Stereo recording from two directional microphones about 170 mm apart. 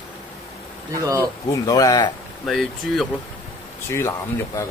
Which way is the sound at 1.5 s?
20° left (ahead or behind).